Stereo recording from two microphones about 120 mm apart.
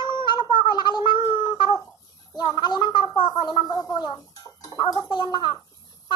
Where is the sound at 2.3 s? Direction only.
40° left (ahead or behind).